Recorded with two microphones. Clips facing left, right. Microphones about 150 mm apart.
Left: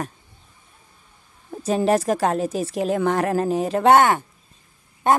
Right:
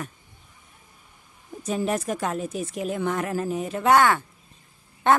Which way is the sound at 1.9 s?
90° left.